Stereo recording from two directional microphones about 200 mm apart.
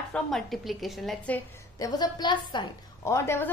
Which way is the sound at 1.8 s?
20° left (ahead or behind).